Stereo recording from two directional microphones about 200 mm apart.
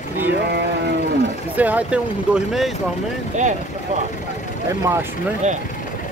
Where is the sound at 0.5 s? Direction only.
55° right (ahead or behind).